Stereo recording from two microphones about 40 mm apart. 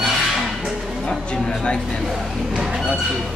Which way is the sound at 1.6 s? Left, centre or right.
Centre.